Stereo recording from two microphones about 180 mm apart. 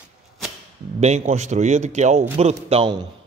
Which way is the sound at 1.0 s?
35° right (ahead or behind).